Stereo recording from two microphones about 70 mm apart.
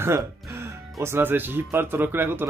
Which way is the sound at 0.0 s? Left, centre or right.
Right.